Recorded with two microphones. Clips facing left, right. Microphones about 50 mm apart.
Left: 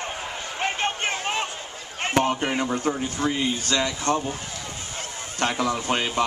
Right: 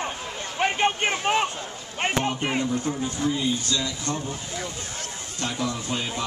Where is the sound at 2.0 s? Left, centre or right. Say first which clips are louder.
Left 2 dB; centre.